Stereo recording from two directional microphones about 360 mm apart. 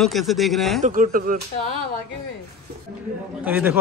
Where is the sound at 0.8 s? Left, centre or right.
Right.